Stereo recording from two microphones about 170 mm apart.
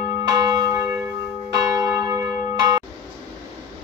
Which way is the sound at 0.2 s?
25° right (ahead or behind).